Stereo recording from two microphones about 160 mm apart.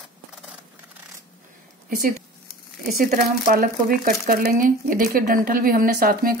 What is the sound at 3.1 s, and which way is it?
Speech, 65° right (ahead or behind).